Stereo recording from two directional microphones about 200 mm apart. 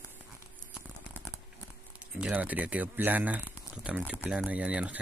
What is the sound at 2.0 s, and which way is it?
Speech, 5° right (ahead or behind).